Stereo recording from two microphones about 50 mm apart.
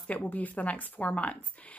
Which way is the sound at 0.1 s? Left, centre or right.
Left.